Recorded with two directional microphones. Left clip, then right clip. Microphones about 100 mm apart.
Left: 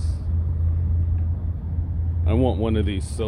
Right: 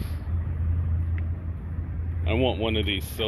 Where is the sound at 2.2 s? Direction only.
50° left (ahead or behind).